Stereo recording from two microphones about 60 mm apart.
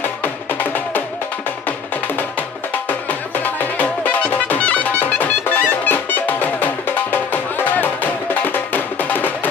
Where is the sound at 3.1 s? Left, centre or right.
Left.